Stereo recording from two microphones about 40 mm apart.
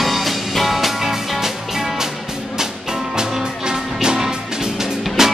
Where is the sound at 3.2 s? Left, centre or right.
Centre.